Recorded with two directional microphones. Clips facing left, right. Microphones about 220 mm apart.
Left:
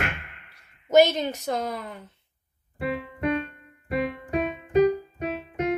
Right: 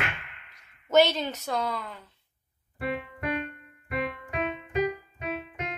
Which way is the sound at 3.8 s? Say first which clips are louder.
Left 5 dB; 40° left (ahead or behind).